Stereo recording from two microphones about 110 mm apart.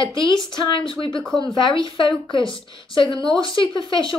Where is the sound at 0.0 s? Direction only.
45° left (ahead or behind).